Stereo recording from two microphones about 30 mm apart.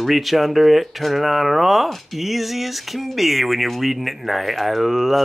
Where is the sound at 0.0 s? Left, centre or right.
Centre.